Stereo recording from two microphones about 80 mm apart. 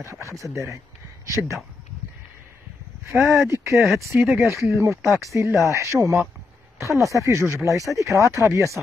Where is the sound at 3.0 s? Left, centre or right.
Right.